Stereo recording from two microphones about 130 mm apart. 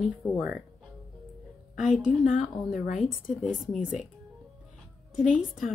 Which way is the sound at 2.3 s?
90° left.